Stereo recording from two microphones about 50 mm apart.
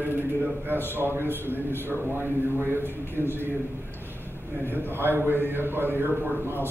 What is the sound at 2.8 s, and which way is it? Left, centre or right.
Speech, left.